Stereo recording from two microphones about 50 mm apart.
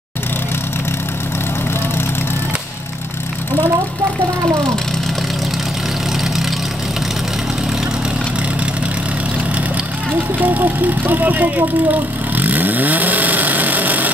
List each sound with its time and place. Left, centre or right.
10.4 s speech: right